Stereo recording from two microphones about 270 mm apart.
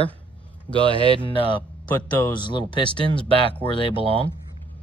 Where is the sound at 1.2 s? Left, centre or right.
Centre.